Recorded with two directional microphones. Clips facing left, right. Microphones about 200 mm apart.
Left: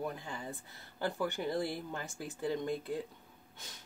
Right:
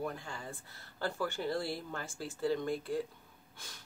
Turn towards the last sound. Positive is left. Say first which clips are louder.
# even
turn(degrees=20)  # may be behind; listen again after turning